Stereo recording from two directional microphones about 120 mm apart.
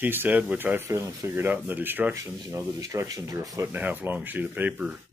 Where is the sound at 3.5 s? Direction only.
15° right (ahead or behind).